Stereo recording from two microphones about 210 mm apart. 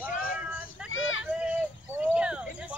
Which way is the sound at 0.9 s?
70° left (ahead or behind).